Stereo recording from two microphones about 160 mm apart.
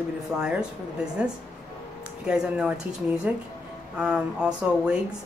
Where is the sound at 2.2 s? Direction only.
5° right (ahead or behind).